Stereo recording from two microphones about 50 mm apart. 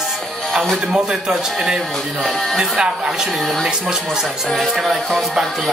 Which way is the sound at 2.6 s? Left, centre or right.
Right.